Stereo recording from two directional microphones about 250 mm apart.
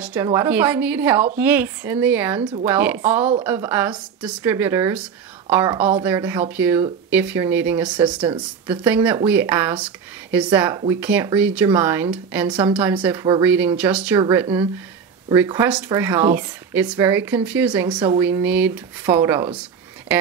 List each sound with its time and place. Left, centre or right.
0.0 s speech: centre
8.1 s speech: centre
8.6 s speech: centre
12.4 s speech: centre
12.7 s a woman's voice: centre
17.9 s speech: centre
18.2 s speech: centre